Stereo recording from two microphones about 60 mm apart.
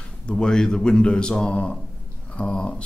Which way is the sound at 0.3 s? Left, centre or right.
Centre.